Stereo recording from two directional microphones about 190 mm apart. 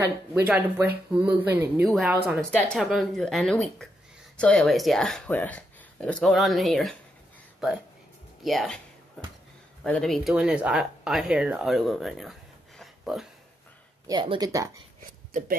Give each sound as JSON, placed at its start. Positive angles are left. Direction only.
{"t": 0.0, "sound": "speech", "side_deg": -10}
{"t": 8.4, "sound": "speech", "side_deg": 0}
{"t": 9.8, "sound": "speech", "side_deg": 5}
{"t": 14.0, "sound": "speech", "side_deg": -25}